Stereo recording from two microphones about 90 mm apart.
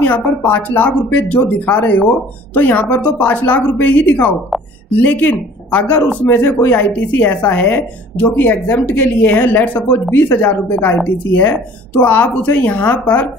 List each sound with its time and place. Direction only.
0.0 s a woman's voice: 20° left (ahead or behind)